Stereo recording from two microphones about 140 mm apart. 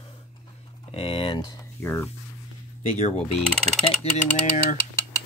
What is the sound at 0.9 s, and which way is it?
Speech, 40° left (ahead or behind).